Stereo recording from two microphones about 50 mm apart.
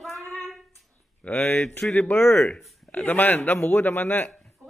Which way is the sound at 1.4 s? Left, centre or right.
Left.